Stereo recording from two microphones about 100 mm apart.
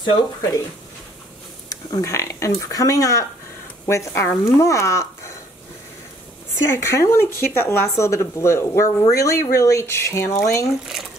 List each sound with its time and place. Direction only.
1.7 s speech: 35° left (ahead or behind)
6.6 s speech: 25° left (ahead or behind)